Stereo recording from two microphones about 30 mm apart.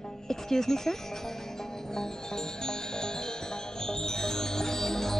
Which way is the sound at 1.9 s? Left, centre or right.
Centre.